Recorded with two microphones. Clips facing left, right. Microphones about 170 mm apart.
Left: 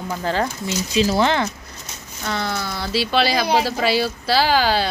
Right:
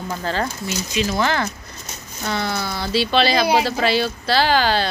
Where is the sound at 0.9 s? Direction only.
30° left (ahead or behind).